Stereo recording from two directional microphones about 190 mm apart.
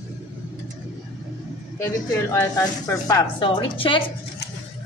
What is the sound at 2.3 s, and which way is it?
A woman's voice, 15° left (ahead or behind).